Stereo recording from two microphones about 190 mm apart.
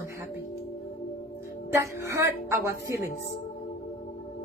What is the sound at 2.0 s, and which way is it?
A woman's voice, 15° right (ahead or behind).